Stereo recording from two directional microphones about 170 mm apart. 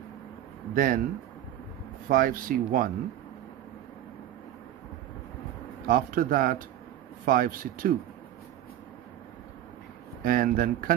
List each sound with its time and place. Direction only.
0.7 s speech: 55° right (ahead or behind)
2.0 s speech: 55° right (ahead or behind)
5.9 s speech: 55° right (ahead or behind)
10.2 s speech: 55° right (ahead or behind)